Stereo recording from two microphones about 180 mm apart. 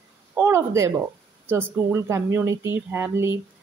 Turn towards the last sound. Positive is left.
turn(degrees=-15)  # may be behind; listen again after turning